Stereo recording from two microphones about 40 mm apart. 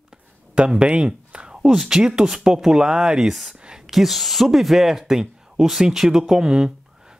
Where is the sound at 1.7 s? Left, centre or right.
Centre.